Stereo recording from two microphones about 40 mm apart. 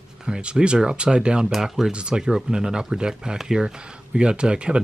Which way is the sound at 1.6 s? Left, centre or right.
Centre.